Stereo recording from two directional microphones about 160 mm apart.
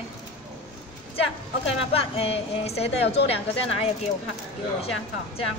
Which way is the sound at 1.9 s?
40° left (ahead or behind).